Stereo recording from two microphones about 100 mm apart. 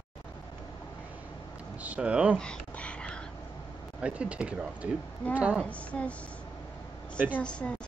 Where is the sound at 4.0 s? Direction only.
10° right (ahead or behind).